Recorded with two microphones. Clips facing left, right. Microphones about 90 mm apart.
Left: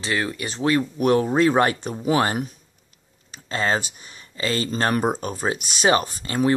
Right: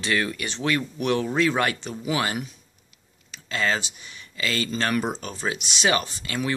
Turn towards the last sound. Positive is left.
turn(degrees=35)  # may be behind; listen again after turning